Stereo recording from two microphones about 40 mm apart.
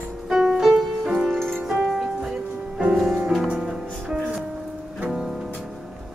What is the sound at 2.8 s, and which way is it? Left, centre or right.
Music, centre.